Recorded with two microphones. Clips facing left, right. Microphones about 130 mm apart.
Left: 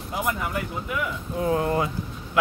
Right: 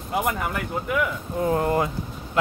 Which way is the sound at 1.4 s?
35° right (ahead or behind).